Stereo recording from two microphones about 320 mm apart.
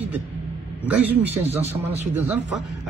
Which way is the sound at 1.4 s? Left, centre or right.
Centre.